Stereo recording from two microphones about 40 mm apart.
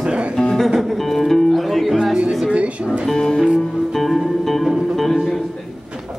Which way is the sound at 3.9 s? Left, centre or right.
Centre.